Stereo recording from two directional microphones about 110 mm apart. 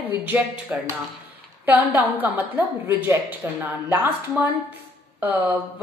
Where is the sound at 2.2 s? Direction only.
15° right (ahead or behind).